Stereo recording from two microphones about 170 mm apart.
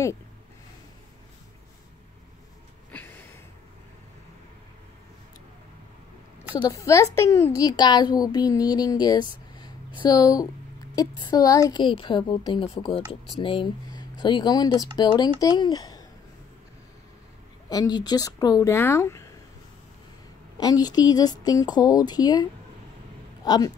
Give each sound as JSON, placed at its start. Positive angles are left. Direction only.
{"t": 2.9, "sound": "a sound", "side_deg": 10}
{"t": 6.5, "sound": "a woman's voice", "side_deg": 20}
{"t": 9.6, "sound": "a sound", "side_deg": 25}
{"t": 11.0, "sound": "a woman's voice", "side_deg": 25}
{"t": 17.6, "sound": "a woman's voice", "side_deg": 25}
{"t": 20.5, "sound": "a woman's voice", "side_deg": 25}